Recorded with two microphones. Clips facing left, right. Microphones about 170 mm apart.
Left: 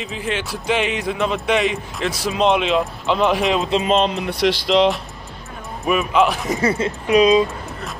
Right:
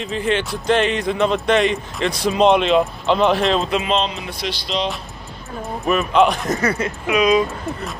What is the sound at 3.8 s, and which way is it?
Speech, 50° left (ahead or behind).